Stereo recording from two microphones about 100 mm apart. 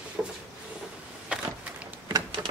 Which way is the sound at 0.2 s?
5° right (ahead or behind).